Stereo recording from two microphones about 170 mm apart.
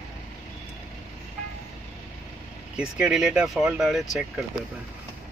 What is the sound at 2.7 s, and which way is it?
Speech, 5° right (ahead or behind).